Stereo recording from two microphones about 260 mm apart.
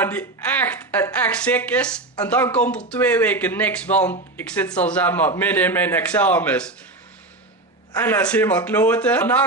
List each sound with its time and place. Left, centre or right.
0.0 s a woman's voice: centre
7.9 s a woman's voice: centre